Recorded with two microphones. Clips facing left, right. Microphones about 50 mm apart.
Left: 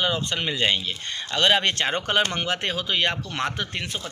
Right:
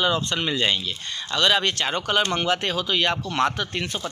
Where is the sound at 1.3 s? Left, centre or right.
Left.